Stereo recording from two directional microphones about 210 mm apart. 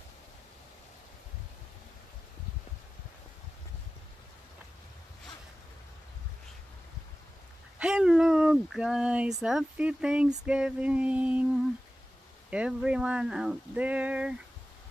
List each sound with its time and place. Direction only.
7.8 s speech: 5° right (ahead or behind)
12.4 s speech: 5° right (ahead or behind)